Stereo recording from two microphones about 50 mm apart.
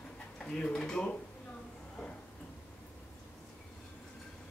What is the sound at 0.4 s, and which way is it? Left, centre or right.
Speech, centre.